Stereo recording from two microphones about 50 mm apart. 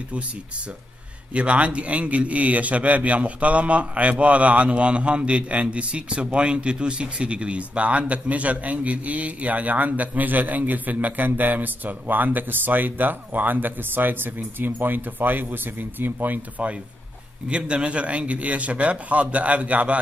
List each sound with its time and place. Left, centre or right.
1.3 s a man's voice: right
17.5 s a man's voice: right